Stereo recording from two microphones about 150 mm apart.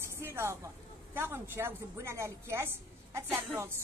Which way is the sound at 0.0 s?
15° right (ahead or behind).